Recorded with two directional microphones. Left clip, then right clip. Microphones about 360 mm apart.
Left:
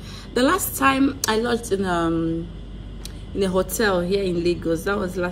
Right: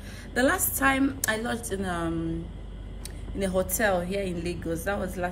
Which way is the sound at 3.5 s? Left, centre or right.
Centre.